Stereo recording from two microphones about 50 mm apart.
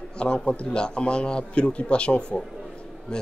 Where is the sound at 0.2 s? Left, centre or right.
Left.